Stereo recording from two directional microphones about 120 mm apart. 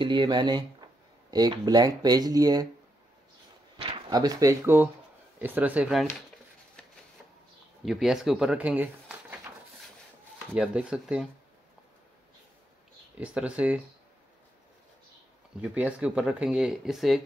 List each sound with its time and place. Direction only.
0.0 s speech: 40° right (ahead or behind)
3.7 s speech: 35° right (ahead or behind); by 5.9 s 10° right (ahead or behind)
7.8 s speech: 5° right (ahead or behind)
10.5 s speech: 10° right (ahead or behind)
13.2 s speech: 10° right (ahead or behind)
15.6 s speech: 10° right (ahead or behind)